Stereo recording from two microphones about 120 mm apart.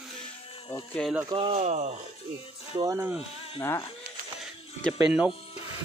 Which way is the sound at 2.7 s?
35° right (ahead or behind).